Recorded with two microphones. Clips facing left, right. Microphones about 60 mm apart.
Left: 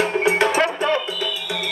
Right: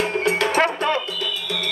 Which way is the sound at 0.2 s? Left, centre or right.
Centre.